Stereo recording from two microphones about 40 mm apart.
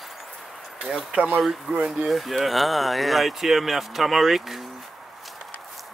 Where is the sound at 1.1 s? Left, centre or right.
Right.